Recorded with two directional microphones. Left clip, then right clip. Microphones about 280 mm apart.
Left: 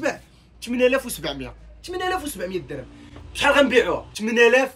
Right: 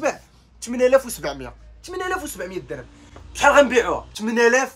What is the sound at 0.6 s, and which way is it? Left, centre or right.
Speech, centre.